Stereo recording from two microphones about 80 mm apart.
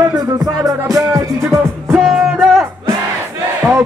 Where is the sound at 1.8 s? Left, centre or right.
Centre.